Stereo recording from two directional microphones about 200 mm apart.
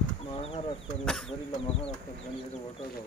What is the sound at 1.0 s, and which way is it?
Chicken, 5° left (ahead or behind).